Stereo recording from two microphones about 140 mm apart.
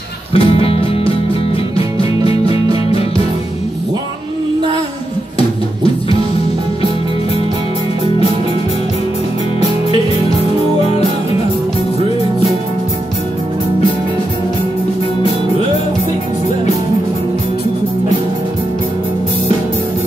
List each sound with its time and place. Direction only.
0.3 s music: 45° left (ahead or behind)